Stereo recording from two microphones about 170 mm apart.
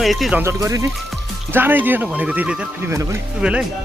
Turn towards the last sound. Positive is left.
turn(degrees=-5)  # may be behind; listen again after turning